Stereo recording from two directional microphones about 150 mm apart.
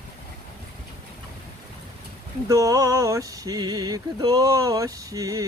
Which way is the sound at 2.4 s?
20° right (ahead or behind).